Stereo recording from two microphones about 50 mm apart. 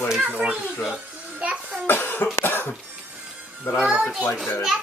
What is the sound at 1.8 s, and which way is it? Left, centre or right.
Cough, left.